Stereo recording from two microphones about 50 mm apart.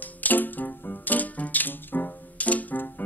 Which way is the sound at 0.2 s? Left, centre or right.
Left.